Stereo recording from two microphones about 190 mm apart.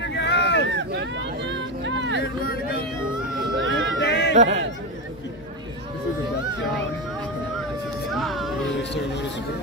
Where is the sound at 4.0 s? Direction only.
65° left (ahead or behind).